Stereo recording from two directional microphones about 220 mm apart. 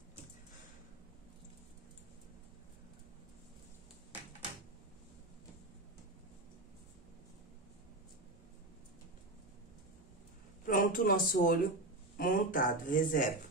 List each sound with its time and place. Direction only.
10.6 s speech: 40° left (ahead or behind)